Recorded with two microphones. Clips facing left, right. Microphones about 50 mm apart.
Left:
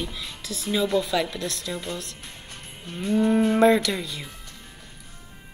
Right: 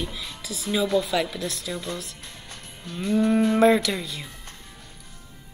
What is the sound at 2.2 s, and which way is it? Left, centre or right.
Music, left.